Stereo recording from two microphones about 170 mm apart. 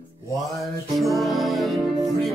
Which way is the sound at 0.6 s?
Centre (ahead or behind).